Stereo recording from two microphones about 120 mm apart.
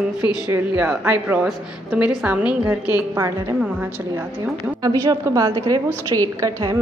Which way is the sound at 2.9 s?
30° right (ahead or behind).